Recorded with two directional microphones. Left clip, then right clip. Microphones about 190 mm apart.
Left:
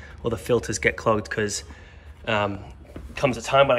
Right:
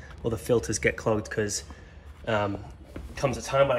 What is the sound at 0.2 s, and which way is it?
A man's voice, 10° right (ahead or behind).